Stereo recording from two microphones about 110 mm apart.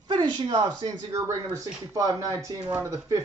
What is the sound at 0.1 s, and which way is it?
Speech, 45° right (ahead or behind).